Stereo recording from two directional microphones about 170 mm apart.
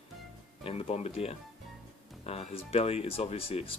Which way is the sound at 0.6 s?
35° left (ahead or behind).